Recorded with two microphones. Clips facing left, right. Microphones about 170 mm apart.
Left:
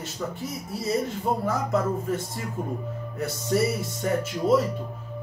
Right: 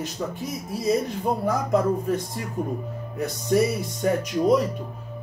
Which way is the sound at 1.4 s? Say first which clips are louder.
Right 5 dB; 15° right (ahead or behind).